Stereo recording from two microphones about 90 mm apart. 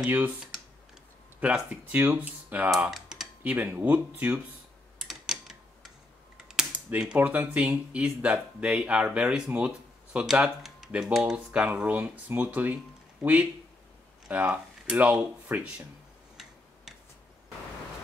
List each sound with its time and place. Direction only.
0.0 s speech: 20° right (ahead or behind)
2.9 s typing: 5° right (ahead or behind)
3.4 s speech: 20° right (ahead or behind)
4.9 s a sound: 5° right (ahead or behind)
6.3 s typing: 5° right (ahead or behind)
7.2 s speech: 20° right (ahead or behind)